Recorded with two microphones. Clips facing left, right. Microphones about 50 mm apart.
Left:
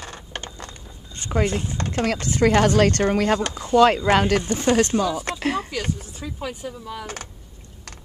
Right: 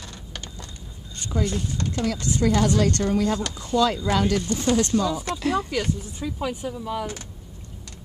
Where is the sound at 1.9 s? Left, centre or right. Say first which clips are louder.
Left 3 dB; left.